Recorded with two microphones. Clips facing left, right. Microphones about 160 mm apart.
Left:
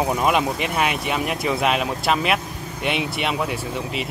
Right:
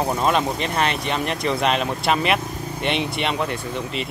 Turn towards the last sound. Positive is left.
turn(degrees=5)  # may be behind; listen again after turning